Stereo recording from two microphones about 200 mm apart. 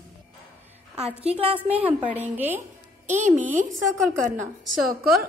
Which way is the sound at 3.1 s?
40° right (ahead or behind).